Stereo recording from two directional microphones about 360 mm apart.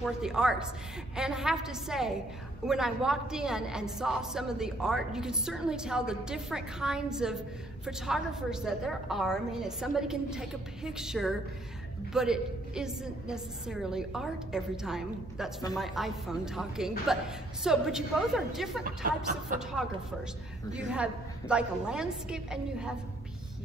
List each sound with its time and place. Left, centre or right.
0.0 s a woman's voice: centre
18.9 s speech: right
20.7 s a woman's voice: centre